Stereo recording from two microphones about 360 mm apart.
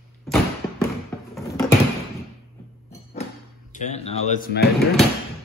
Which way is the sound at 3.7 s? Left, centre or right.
Centre.